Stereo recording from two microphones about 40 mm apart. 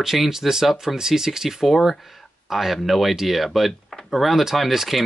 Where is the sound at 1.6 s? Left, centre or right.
Centre.